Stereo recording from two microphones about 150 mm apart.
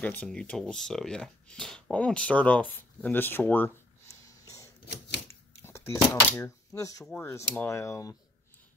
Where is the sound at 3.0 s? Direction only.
15° left (ahead or behind).